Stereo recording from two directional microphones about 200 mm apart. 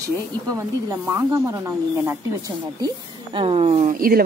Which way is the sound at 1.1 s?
15° right (ahead or behind).